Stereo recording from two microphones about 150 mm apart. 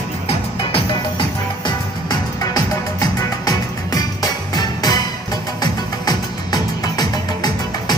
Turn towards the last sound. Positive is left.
turn(degrees=30)  # may be behind; listen again after turning